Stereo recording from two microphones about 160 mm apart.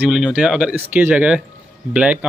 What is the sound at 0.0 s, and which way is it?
Speech, 5° right (ahead or behind).